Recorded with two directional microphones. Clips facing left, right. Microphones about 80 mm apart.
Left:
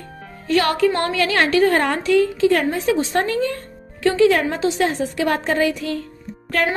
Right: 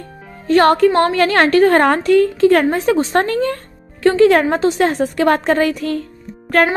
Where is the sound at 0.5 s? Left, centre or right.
Right.